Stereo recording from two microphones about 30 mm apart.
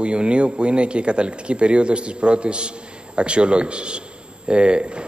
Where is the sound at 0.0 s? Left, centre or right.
Right.